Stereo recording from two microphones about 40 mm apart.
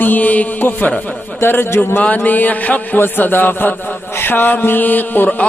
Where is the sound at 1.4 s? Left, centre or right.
Left.